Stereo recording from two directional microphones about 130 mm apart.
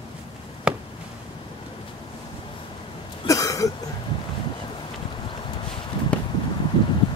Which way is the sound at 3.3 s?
25° left (ahead or behind).